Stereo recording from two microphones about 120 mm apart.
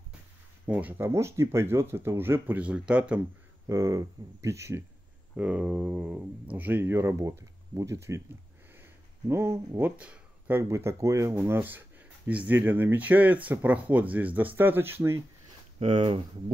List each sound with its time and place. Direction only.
0.7 s speech: 15° right (ahead or behind)
3.6 s speech: 30° right (ahead or behind)
5.3 s speech: 10° right (ahead or behind)
9.3 s speech: 20° right (ahead or behind)
10.6 s speech: 20° right (ahead or behind)
15.8 s speech: 45° right (ahead or behind)